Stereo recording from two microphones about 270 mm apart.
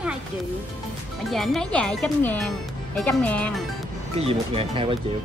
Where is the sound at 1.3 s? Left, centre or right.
Centre.